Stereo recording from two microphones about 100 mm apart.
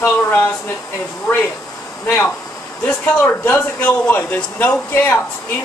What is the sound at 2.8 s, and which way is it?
Speech, 15° left (ahead or behind).